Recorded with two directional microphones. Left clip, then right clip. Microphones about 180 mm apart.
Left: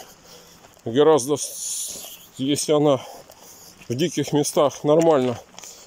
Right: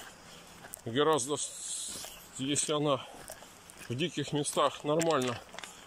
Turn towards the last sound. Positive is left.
turn(degrees=35)  # may be behind; listen again after turning